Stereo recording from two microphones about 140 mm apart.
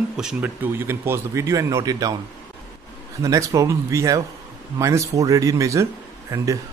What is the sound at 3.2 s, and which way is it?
A man's voice, 25° right (ahead or behind).